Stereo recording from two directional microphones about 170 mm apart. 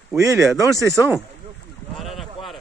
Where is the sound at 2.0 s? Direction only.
Centre (ahead or behind).